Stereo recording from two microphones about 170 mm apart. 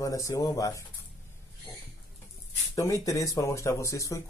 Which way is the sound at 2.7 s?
20° left (ahead or behind).